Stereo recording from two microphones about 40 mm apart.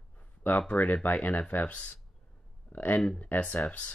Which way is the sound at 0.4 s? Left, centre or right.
Left.